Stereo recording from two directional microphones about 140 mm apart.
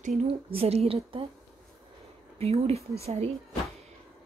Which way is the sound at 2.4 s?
45° right (ahead or behind).